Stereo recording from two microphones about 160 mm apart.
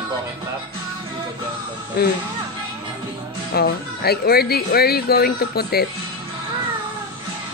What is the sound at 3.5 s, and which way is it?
Speech, 80° left.